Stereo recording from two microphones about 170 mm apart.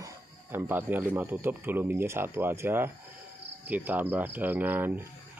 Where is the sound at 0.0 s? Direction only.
15° right (ahead or behind).